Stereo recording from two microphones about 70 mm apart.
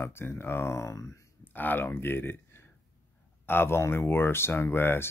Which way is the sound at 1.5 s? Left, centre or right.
Left.